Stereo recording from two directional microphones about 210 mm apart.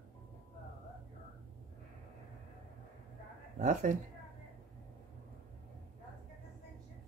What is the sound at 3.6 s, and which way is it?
Speech, 35° right (ahead or behind).